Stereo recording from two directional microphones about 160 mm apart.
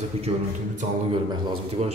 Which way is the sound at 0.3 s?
35° right (ahead or behind).